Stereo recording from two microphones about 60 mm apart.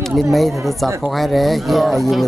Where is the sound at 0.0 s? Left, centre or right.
Centre.